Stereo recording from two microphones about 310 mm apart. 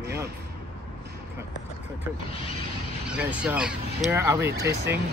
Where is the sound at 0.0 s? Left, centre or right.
Centre.